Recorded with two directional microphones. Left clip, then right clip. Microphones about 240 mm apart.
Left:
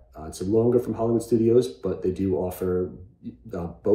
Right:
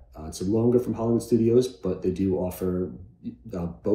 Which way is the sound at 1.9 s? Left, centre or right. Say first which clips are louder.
Left 1 dB; left.